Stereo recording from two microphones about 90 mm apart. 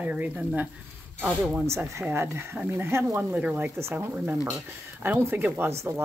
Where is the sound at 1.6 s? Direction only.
30° right (ahead or behind).